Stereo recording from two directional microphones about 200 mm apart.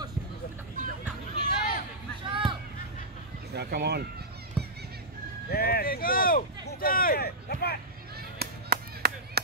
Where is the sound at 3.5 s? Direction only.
55° right (ahead or behind).